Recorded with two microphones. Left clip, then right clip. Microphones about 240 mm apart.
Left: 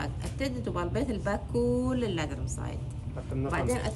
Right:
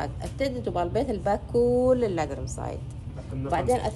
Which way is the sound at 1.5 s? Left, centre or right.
Right.